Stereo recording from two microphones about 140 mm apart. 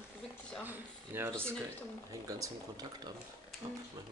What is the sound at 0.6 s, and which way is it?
Speech, 15° right (ahead or behind).